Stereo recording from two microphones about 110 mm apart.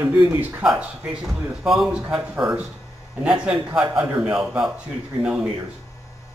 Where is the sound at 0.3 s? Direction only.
15° right (ahead or behind).